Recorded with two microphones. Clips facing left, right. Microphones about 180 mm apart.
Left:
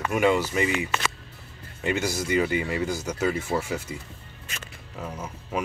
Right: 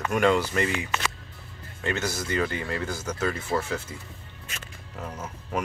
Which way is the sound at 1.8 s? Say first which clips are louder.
Left 3 dB; 10° left (ahead or behind).